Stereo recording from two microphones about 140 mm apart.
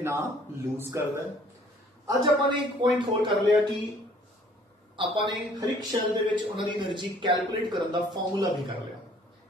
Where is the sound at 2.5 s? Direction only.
35° right (ahead or behind).